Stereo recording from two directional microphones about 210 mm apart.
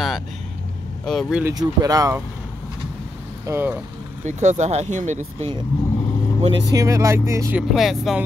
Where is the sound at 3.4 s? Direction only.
10° right (ahead or behind).